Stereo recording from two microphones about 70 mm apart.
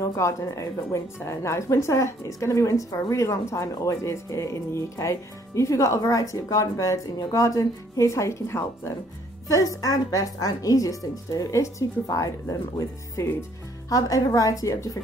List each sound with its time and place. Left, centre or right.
0.0 s speech: left
9.5 s speech: left
12.7 s speech: left